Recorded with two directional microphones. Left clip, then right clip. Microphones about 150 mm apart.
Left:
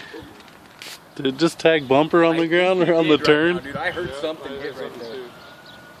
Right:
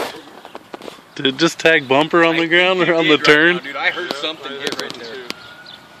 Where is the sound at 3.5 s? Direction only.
45° left (ahead or behind).